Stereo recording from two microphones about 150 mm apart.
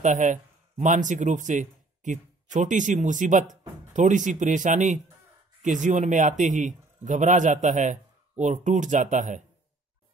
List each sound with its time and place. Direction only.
0.0 s a man's voice: 55° right (ahead or behind)